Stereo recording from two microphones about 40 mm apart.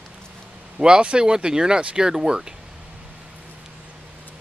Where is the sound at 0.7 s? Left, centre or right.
Right.